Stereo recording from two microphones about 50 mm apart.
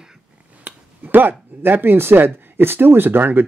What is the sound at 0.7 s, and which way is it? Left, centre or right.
Speech, right.